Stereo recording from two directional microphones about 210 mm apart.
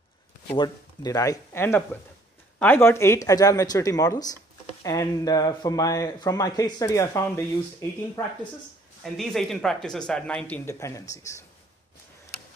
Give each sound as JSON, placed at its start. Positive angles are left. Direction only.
{"t": 0.6, "sound": "speech", "side_deg": 15}
{"t": 9.0, "sound": "speech", "side_deg": 0}